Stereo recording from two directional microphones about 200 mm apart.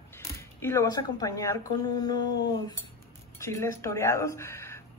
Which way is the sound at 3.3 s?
15° left (ahead or behind).